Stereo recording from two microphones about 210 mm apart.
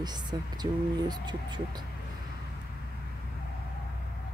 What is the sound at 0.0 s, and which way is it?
Speech, 20° right (ahead or behind).